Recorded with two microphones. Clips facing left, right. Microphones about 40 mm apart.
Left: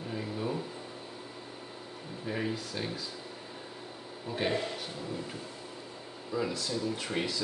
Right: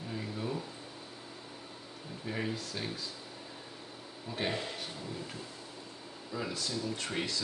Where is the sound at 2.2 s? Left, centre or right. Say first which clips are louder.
Left 2 dB; centre.